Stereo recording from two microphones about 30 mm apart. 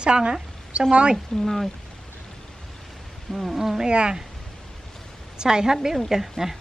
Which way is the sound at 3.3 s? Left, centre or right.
Centre.